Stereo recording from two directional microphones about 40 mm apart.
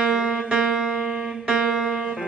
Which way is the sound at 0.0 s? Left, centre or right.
Centre.